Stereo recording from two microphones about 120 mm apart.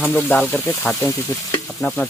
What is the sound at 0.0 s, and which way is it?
Speech, 15° left (ahead or behind).